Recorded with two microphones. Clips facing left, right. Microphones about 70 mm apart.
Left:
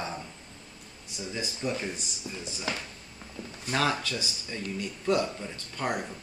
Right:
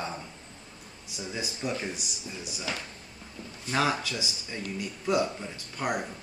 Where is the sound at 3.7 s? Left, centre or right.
Centre.